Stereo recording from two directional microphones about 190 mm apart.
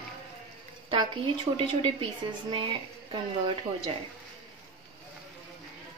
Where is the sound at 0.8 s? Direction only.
25° right (ahead or behind).